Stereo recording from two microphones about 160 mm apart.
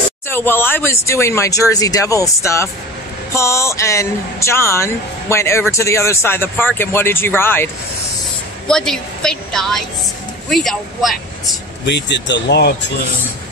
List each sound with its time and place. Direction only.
0.3 s speech: 15° left (ahead or behind)
8.6 s a woman's voice: 5° left (ahead or behind)
11.8 s speech: 90° left